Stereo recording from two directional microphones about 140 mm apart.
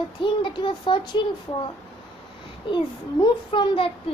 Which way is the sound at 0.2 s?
35° left (ahead or behind).